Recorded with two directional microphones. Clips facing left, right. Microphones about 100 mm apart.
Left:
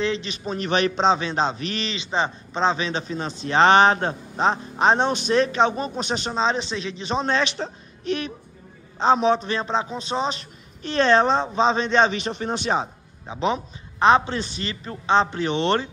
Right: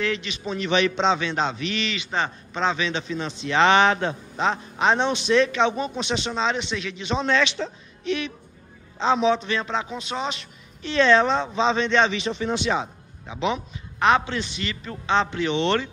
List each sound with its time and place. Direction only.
0.0 s a man's voice: 30° left (ahead or behind)
2.0 s a man's voice: 20° left (ahead or behind); by 15.9 s 45° left (ahead or behind)